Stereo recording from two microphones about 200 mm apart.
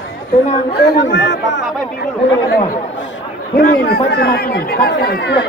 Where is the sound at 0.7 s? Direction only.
55° left (ahead or behind).